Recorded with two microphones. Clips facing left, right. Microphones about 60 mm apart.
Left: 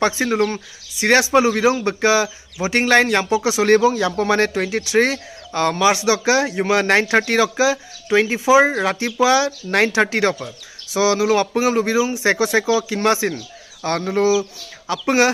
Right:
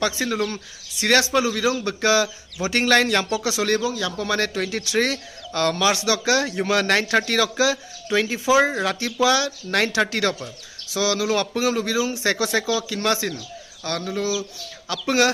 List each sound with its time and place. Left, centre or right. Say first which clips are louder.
0.0 s speech: left 5 dB; left
1.4 s a man's voice: left 6 dB; left
2.0 s speech: left 3 dB; centre
3.6 s a man's voice: left 8 dB; left
14.9 s speech: left 3 dB; left